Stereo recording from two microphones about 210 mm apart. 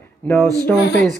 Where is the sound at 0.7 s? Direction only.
55° left (ahead or behind).